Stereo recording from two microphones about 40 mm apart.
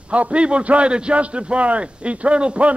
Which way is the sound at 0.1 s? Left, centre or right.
Right.